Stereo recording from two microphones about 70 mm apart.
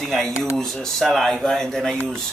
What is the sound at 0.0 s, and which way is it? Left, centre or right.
Speech, centre.